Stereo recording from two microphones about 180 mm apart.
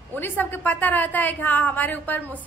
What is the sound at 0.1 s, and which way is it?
A woman's voice, 10° left (ahead or behind).